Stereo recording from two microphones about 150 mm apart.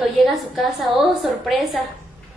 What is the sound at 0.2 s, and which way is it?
A woman's voice, centre (ahead or behind).